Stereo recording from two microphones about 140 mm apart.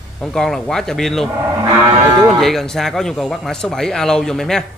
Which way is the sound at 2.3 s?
Centre (ahead or behind).